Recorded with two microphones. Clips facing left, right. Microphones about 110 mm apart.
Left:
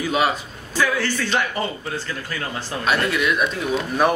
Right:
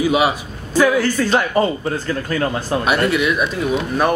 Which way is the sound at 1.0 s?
40° right (ahead or behind).